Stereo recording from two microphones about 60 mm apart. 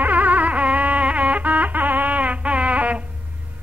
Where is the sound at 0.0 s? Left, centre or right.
Right.